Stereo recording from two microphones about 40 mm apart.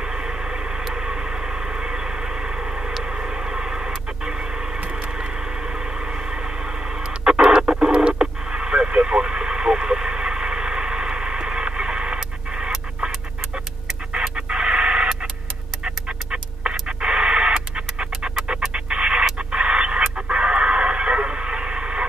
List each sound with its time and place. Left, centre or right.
0.0 s vehicle: right
14.3 s chicken: right
15.8 s bird: right
16.8 s radio: right
18.7 s music: right
19.3 s radio: right